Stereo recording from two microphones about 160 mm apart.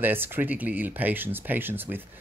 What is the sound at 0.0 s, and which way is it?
Speech, 10° right (ahead or behind).